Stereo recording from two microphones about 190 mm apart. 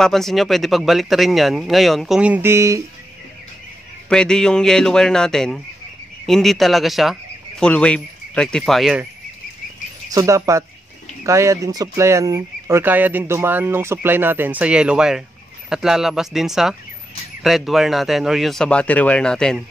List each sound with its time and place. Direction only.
0.0 s speech: centre (ahead or behind); by 2.8 s 15° right (ahead or behind)
4.1 s speech: 5° left (ahead or behind)
10.1 s speech: 15° right (ahead or behind); by 19.6 s 5° left (ahead or behind)